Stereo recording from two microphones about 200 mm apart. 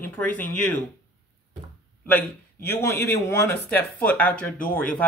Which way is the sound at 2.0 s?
10° left (ahead or behind).